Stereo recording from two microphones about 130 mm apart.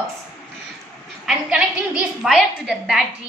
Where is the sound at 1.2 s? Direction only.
10° right (ahead or behind).